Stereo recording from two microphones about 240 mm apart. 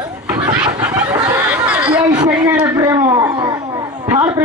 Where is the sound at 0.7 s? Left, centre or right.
Centre.